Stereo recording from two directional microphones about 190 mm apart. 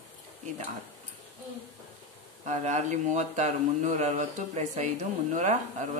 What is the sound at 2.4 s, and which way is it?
Speech, 40° right (ahead or behind).